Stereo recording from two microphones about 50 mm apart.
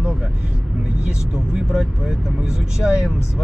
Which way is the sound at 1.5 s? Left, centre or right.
Centre.